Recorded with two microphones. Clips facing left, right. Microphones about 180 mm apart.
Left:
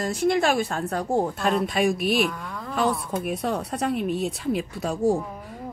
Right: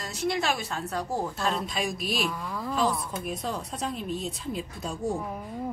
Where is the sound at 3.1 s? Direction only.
60° left (ahead or behind).